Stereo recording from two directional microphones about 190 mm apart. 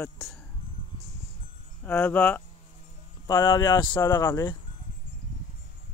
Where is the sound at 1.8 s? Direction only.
10° left (ahead or behind).